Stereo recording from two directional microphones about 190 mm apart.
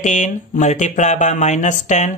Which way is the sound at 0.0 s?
40° left (ahead or behind).